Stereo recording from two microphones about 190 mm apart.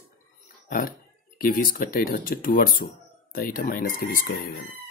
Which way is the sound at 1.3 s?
50° left (ahead or behind).